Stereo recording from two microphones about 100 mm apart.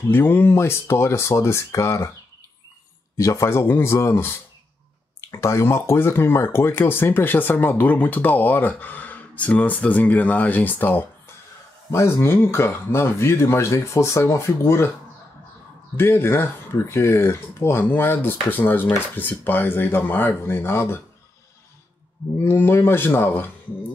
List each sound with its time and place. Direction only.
0.1 s speech: 20° left (ahead or behind)
3.2 s speech: 35° left (ahead or behind)
16.0 s speech: 25° left (ahead or behind)
22.4 s speech: 25° left (ahead or behind)